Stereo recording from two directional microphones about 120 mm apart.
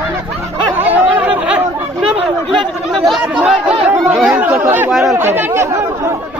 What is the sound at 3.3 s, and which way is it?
Chatter, 10° right (ahead or behind).